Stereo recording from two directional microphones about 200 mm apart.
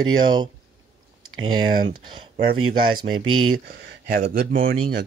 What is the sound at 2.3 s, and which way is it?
Speech, 25° right (ahead or behind).